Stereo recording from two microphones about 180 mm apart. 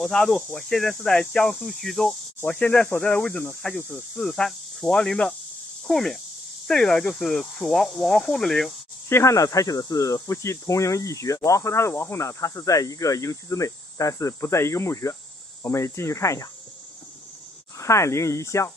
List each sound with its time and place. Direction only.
0.0 s speech: centre (ahead or behind)
9.1 s speech: 15° left (ahead or behind)
17.7 s speech: 15° left (ahead or behind)